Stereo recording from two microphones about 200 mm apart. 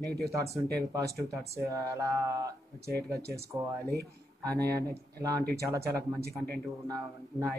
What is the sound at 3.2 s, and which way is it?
Speech, 55° right (ahead or behind).